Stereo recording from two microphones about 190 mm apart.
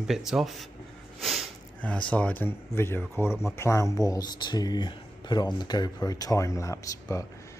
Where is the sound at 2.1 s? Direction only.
10° left (ahead or behind).